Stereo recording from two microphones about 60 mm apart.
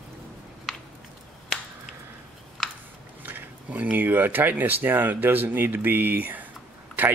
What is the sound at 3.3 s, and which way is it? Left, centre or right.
Speech, right.